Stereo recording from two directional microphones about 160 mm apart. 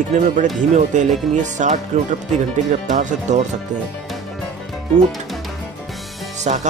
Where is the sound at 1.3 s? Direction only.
50° right (ahead or behind).